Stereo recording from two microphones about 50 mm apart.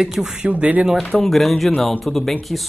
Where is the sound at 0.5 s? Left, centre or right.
Right.